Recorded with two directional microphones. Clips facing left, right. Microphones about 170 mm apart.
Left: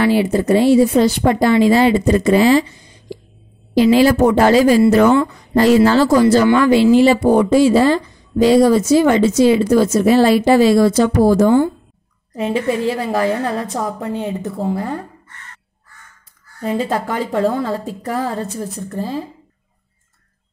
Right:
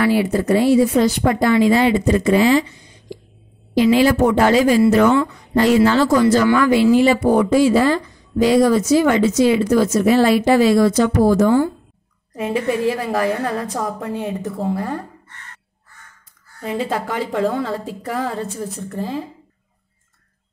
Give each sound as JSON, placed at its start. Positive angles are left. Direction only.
{"t": 0.0, "sound": "speech", "side_deg": 25}
{"t": 3.7, "sound": "speech", "side_deg": 35}
{"t": 16.6, "sound": "speech", "side_deg": 40}